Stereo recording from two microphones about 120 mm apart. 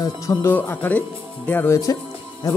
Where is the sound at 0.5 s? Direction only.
15° left (ahead or behind).